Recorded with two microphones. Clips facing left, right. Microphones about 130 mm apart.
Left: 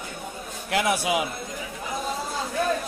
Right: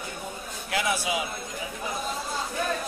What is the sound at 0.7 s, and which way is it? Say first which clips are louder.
Speech: left 4 dB; 60° left (ahead or behind).